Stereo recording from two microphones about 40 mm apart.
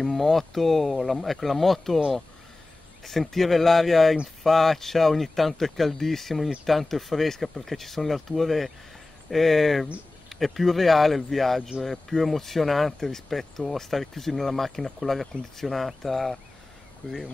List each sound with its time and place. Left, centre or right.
0.0 s speech: centre
3.0 s speech: centre
17.0 s speech: left